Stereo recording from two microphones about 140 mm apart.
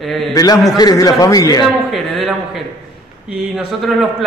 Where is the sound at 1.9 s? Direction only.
Centre (ahead or behind).